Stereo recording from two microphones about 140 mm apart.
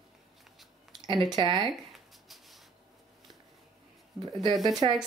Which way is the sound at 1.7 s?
Centre (ahead or behind).